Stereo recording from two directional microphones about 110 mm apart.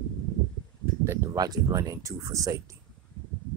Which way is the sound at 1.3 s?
35° right (ahead or behind).